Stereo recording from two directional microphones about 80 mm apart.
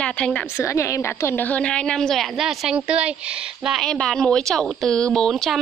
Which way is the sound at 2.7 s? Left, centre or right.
Centre.